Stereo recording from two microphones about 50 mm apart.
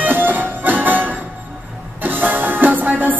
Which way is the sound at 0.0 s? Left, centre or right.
Right.